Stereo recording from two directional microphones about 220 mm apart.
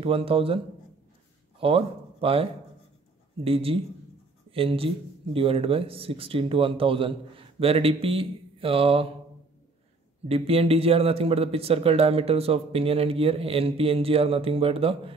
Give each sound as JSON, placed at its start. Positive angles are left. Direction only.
{"t": 0.0, "sound": "speech", "side_deg": -25}
{"t": 1.6, "sound": "speech", "side_deg": -25}
{"t": 3.4, "sound": "speech", "side_deg": -25}
{"t": 10.2, "sound": "speech", "side_deg": -25}